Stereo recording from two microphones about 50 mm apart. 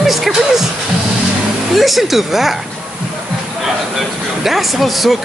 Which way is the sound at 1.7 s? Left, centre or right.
Centre.